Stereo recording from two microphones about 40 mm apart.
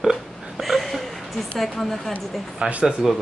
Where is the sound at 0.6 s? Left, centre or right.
Centre.